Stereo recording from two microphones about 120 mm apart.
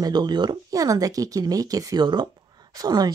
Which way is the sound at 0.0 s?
35° right (ahead or behind).